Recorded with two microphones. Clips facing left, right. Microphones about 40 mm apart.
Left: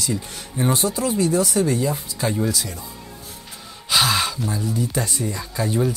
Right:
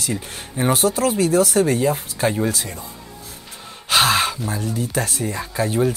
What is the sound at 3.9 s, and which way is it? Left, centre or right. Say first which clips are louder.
Sigh: right 3 dB; right.